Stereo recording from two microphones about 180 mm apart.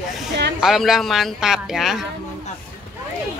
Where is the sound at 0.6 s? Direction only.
Centre (ahead or behind).